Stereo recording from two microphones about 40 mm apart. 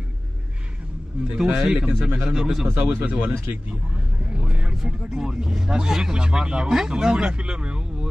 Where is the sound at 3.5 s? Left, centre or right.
Right.